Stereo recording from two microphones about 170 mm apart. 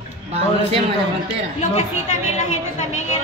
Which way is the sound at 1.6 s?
40° left (ahead or behind).